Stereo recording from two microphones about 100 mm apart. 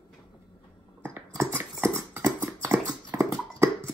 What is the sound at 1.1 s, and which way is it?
Dog, 20° right (ahead or behind).